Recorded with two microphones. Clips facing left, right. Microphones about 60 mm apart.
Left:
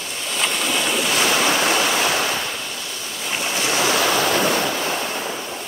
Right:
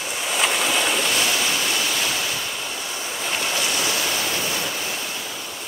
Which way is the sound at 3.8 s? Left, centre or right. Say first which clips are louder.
Left 6 dB; left.